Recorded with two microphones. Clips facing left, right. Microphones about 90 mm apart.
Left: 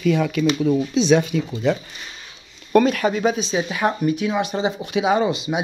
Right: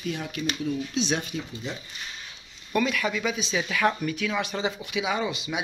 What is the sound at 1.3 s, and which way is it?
Speech, 85° left.